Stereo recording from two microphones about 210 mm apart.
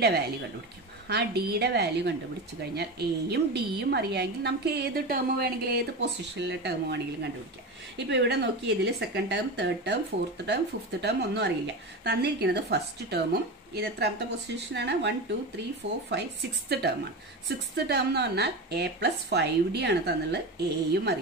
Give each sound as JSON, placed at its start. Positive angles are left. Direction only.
{"t": 1.0, "sound": "a woman's voice", "side_deg": -50}
{"t": 8.1, "sound": "a woman's voice", "side_deg": -55}